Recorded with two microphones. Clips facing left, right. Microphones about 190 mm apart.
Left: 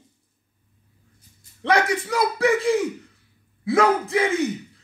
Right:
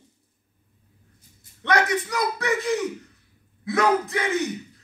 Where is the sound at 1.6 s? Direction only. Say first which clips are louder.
Left 2 dB; 30° left (ahead or behind).